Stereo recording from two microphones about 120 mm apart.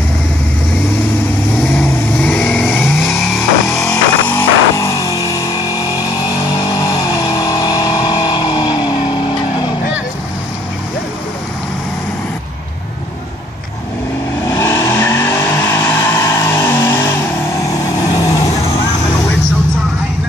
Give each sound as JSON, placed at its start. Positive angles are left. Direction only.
{"t": 2.2, "sound": "vehicle", "side_deg": 10}
{"t": 3.9, "sound": "music", "side_deg": 25}
{"t": 7.3, "sound": "vehicle", "side_deg": 35}
{"t": 14.5, "sound": "vehicle", "side_deg": 25}
{"t": 17.6, "sound": "vehicle", "side_deg": 30}